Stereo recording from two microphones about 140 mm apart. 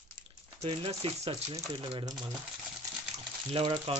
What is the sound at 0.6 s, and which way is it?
Speech, 45° right (ahead or behind).